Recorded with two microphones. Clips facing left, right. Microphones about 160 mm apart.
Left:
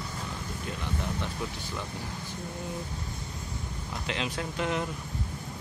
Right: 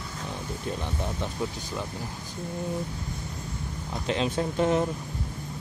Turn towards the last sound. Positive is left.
turn(degrees=-35)  # may be behind; listen again after turning